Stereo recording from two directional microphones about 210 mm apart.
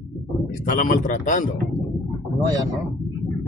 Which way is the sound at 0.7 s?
40° left (ahead or behind).